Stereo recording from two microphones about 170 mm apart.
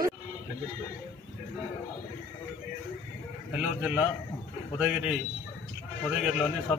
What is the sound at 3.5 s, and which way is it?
Speech, 5° right (ahead or behind).